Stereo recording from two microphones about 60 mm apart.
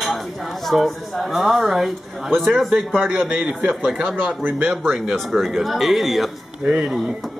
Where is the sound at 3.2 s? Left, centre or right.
Centre.